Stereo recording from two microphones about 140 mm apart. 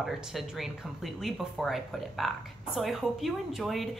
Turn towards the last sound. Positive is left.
turn(degrees=0)  # may be behind; listen again after turning